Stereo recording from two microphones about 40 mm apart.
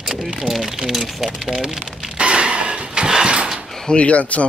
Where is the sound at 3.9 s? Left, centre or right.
Left.